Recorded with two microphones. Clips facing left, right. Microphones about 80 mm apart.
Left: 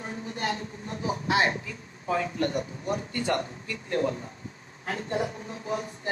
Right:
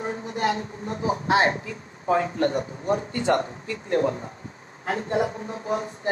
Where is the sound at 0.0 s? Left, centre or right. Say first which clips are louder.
Right 7 dB; right.